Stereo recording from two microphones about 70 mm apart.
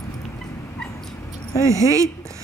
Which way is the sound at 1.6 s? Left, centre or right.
Right.